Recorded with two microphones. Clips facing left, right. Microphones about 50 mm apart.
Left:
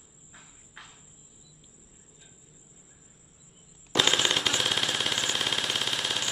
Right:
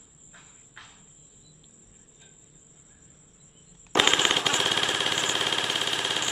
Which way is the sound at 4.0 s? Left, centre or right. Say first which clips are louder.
Right 2 dB; right.